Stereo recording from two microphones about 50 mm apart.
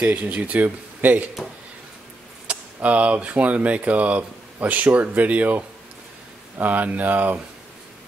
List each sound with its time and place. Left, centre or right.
0.0 s speech: right
2.5 s speech: right
6.6 s speech: right